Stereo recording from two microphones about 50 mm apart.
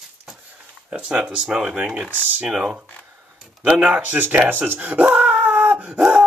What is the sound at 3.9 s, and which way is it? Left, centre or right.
Speech, right.